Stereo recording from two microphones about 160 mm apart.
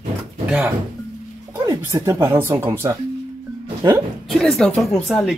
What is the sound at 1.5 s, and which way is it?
Speech, 20° right (ahead or behind).